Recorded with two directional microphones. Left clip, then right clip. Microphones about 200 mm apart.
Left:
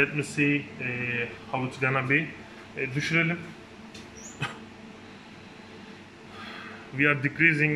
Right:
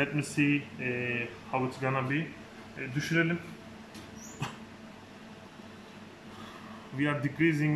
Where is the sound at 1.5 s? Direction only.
10° right (ahead or behind).